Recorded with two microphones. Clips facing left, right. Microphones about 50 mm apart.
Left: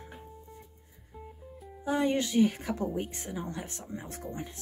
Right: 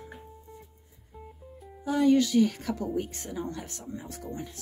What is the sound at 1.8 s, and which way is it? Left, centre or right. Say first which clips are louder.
Speech: right 5 dB; left.